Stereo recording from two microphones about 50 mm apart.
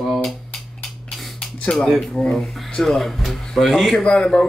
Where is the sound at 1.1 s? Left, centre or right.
Centre.